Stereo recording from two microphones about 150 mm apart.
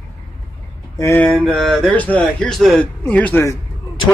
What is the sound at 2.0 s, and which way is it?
Speech, 10° left (ahead or behind).